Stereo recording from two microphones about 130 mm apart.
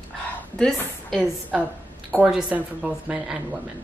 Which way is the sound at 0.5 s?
5° left (ahead or behind).